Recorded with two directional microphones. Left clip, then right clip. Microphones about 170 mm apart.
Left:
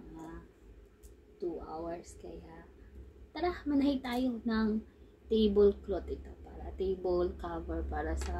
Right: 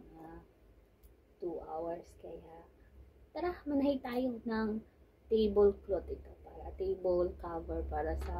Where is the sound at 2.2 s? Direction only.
20° left (ahead or behind).